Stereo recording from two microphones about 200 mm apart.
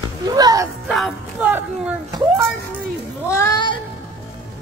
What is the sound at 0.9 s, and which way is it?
Music, centre (ahead or behind).